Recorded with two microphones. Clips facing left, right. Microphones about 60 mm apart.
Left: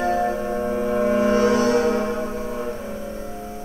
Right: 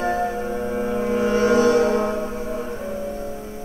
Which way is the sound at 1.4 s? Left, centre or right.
Right.